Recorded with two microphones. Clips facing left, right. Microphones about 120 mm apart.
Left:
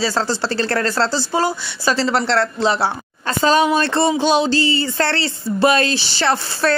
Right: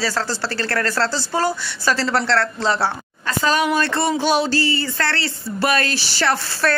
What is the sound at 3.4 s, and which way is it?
Speech, 25° left (ahead or behind).